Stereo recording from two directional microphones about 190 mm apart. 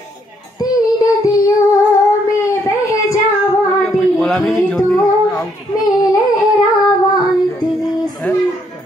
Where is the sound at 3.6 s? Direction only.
5° left (ahead or behind).